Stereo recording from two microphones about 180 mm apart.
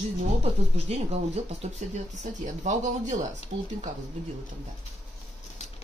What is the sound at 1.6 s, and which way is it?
A woman's voice, 40° right (ahead or behind).